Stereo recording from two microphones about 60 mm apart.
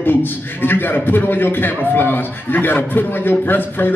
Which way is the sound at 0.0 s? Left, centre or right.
Left.